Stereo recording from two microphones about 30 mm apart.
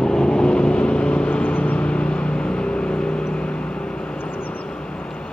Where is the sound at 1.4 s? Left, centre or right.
Left.